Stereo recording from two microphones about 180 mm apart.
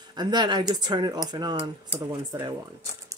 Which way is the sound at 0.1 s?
25° right (ahead or behind).